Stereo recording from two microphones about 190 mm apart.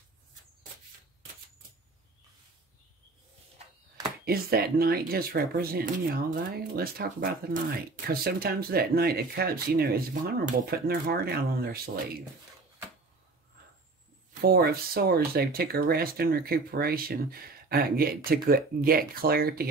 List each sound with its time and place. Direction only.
4.2 s speech: 55° right (ahead or behind)
14.4 s speech: 55° right (ahead or behind)